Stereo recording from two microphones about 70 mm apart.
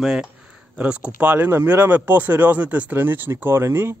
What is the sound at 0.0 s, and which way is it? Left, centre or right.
Speech, centre.